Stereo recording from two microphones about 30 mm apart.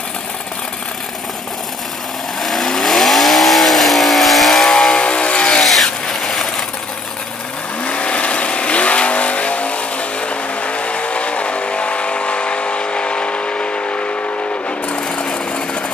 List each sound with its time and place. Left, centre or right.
2.4 s vehicle: centre
4.9 s vehicle: left
5.6 s vehicle: centre
7.8 s vehicle: left